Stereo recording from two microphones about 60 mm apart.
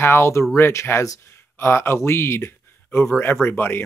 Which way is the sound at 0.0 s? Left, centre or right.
Left.